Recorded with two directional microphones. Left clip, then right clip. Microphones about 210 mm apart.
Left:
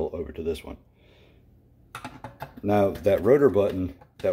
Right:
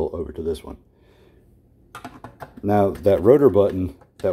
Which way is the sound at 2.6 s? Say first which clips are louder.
Right 4 dB; 20° right (ahead or behind).